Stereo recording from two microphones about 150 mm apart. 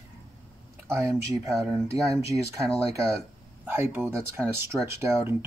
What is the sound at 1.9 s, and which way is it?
Speech, 20° right (ahead or behind).